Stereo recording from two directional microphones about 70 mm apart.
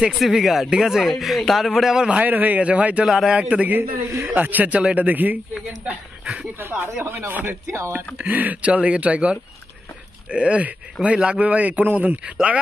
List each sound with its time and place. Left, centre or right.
0.2 s a man's voice: centre
2.2 s a man's voice: right
3.1 s speech: centre
3.3 s a man's voice: centre
5.9 s a sound: centre
6.6 s speech: right
8.2 s a man's voice: right